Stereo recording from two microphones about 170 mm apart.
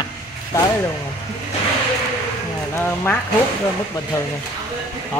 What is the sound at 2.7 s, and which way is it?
Speech, 10° left (ahead or behind).